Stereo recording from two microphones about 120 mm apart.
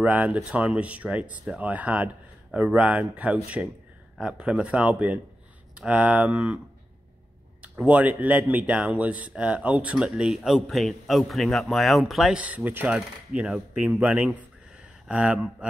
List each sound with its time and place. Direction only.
0.0 s speech: 10° right (ahead or behind)
7.6 s speech: 10° right (ahead or behind)